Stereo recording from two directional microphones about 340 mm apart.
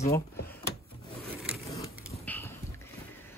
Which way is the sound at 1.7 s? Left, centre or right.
Centre.